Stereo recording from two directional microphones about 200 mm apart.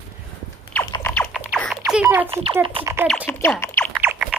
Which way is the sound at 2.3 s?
30° right (ahead or behind).